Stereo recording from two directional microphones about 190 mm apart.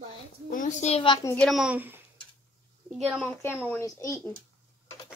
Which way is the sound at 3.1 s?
5° left (ahead or behind).